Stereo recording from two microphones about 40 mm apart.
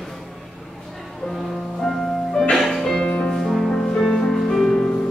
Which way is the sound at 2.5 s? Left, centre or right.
Centre.